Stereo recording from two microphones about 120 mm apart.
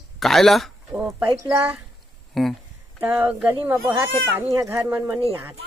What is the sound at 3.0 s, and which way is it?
Speech, 15° right (ahead or behind).